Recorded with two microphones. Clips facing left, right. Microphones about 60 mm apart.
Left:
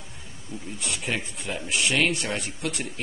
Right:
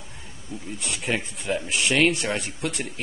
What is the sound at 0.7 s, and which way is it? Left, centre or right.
Speech, centre.